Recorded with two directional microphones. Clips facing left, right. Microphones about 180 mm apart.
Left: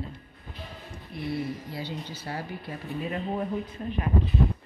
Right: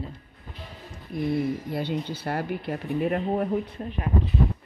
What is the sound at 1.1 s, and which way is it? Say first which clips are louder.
Speech: right 6 dB; 50° right (ahead or behind).